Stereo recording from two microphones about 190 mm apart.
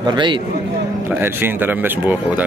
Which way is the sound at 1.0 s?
10° right (ahead or behind).